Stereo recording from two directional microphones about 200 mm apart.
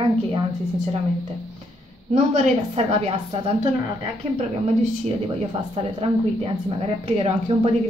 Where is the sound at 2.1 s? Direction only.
35° right (ahead or behind).